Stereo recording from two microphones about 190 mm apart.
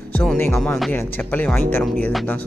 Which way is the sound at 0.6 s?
Centre (ahead or behind).